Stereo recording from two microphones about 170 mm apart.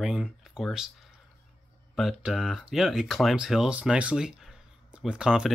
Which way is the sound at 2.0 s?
Centre (ahead or behind).